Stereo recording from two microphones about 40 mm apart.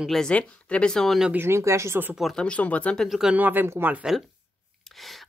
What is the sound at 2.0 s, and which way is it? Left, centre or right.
Speech, right.